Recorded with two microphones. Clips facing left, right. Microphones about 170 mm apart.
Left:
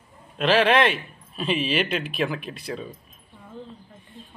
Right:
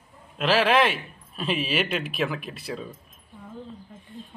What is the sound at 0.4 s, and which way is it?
Speech, 5° right (ahead or behind).